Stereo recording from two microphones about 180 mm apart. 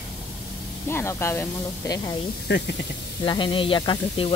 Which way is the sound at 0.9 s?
15° left (ahead or behind).